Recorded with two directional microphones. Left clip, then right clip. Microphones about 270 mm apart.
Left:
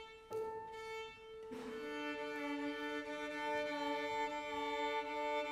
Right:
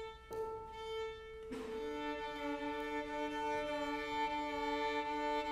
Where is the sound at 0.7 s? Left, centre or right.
Centre.